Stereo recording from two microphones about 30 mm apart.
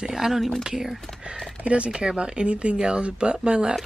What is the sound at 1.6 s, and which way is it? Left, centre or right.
Speech, right.